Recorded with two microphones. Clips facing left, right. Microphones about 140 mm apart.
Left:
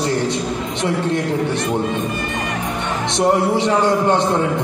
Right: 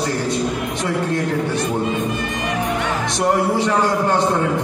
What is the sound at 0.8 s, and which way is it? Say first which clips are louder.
Speech: left 3 dB; 20° left (ahead or behind).